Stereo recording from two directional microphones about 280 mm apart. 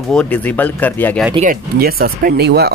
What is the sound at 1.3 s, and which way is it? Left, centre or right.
Speech, right.